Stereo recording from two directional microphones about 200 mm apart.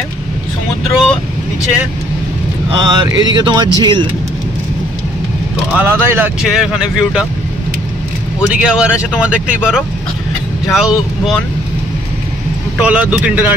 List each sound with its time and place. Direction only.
0.8 s speech: centre (ahead or behind)
2.8 s speech: 20° right (ahead or behind)
5.8 s speech: 10° right (ahead or behind)
8.4 s speech: 5° right (ahead or behind)
12.7 s speech: 5° right (ahead or behind)